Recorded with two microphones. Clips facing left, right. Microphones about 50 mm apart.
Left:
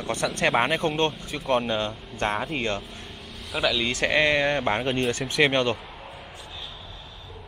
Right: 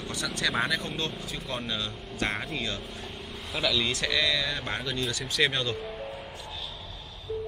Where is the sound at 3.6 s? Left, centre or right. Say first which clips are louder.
Left 3 dB; left.